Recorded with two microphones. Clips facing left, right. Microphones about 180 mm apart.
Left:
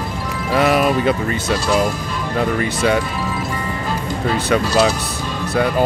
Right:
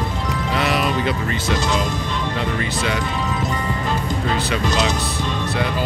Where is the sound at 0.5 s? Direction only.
50° left (ahead or behind).